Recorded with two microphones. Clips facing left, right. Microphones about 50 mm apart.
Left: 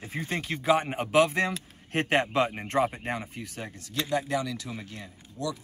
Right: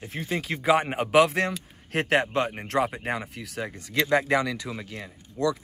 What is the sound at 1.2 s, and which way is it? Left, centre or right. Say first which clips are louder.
Speech: right 2 dB; right.